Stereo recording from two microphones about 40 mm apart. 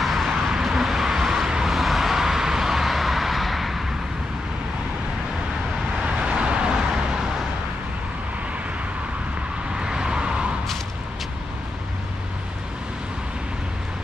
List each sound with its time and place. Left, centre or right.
0.0 s vehicle: centre
6.0 s vehicle: right
9.8 s vehicle: centre